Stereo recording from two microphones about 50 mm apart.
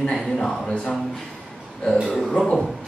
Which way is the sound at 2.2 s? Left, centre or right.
Centre.